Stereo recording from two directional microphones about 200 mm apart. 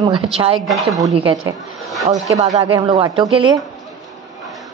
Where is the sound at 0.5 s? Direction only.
Centre (ahead or behind).